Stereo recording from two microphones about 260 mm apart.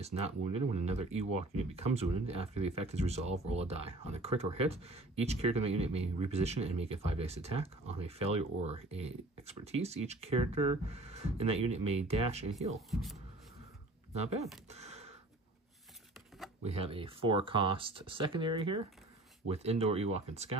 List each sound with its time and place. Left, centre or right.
0.0 s speech: right
12.9 s speech: centre
14.7 s a sound: right
16.6 s speech: right